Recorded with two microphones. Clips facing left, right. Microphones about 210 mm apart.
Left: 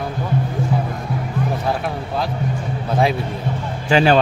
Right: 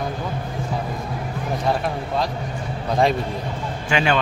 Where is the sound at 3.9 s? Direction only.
35° left (ahead or behind).